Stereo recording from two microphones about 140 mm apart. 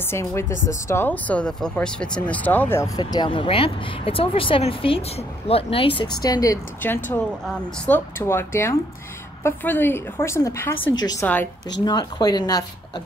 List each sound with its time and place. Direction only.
0.1 s speech: 20° left (ahead or behind)
3.0 s speech: 30° left (ahead or behind)
6.2 s speech: 25° left (ahead or behind)
6.8 s speech: 15° left (ahead or behind)
10.8 s speech: 30° left (ahead or behind)